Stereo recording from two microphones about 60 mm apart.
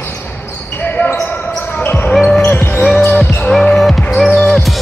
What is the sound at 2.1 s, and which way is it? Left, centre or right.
Basketball bounce, centre.